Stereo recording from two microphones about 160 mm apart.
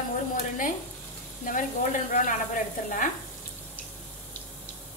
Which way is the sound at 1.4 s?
55° left (ahead or behind).